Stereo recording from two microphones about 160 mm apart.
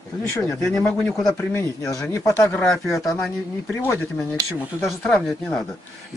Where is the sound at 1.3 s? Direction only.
15° left (ahead or behind).